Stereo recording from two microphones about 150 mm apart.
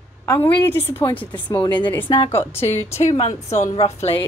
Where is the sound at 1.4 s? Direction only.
30° left (ahead or behind).